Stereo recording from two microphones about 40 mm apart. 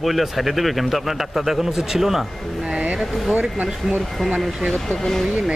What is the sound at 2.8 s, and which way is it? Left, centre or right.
Speech, right.